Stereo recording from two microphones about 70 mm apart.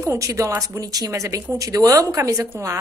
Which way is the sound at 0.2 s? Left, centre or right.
Right.